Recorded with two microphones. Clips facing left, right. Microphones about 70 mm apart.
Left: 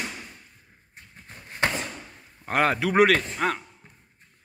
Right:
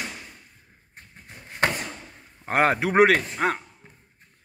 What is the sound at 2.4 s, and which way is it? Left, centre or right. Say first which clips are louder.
Speech: right 2 dB; right.